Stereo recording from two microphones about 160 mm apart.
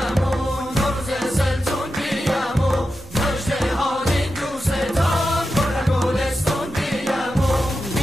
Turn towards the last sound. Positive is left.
turn(degrees=0)  # may be behind; listen again after turning